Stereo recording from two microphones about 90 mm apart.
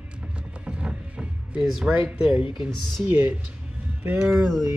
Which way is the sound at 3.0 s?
20° right (ahead or behind).